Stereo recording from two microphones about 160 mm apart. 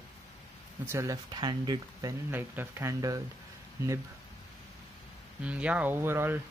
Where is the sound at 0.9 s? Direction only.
20° right (ahead or behind).